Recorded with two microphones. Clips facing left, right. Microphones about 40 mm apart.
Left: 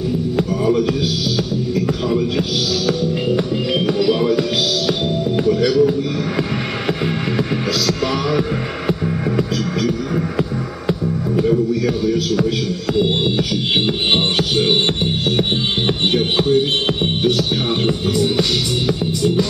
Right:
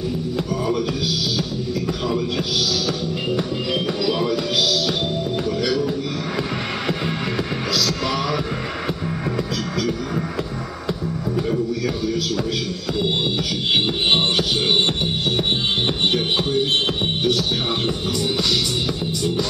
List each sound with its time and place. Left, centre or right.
1.9 s music: centre
8.3 s music: centre
11.3 s music: centre
16.1 s music: centre